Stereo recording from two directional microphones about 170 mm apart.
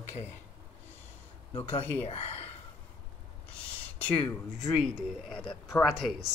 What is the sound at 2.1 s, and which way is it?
Speech, 35° left (ahead or behind).